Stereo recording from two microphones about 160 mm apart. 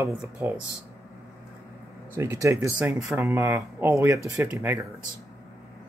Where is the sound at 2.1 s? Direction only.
15° right (ahead or behind).